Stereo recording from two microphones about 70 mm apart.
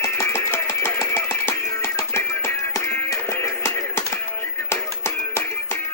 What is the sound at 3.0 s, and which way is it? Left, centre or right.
Music, left.